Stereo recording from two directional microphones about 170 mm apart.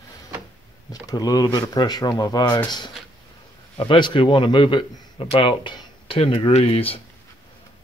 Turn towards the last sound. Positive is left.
turn(degrees=35)  # may be behind; listen again after turning